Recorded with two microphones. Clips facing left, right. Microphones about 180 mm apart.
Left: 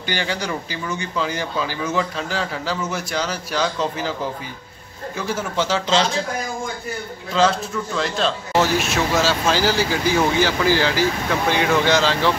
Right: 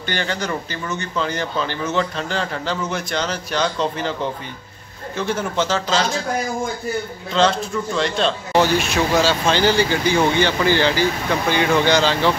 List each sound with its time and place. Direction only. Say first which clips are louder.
0.1 s speech: right 1 dB; 10° left (ahead or behind)
7.3 s speech: right 1 dB; 5° left (ahead or behind)